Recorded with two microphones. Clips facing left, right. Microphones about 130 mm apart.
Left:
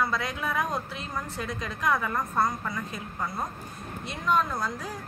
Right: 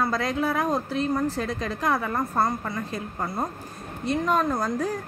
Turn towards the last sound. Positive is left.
turn(degrees=-45)  # may be behind; listen again after turning